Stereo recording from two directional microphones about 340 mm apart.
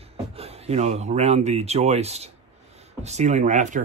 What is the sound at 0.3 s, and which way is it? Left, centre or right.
Speech, centre.